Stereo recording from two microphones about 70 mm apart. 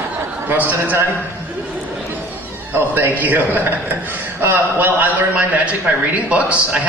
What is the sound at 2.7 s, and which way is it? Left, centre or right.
A man's voice, right.